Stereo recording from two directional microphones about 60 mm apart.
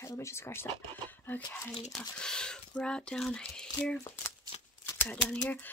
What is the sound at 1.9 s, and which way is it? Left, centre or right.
Speech, centre.